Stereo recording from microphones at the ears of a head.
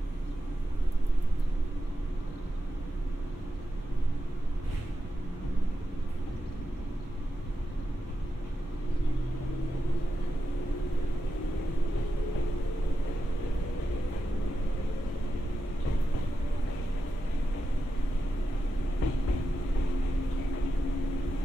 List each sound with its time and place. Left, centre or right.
11.3 s vehicle: left
18.9 s train: left